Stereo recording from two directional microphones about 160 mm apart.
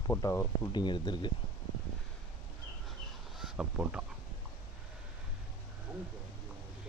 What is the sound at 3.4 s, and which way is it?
Speech, 5° right (ahead or behind).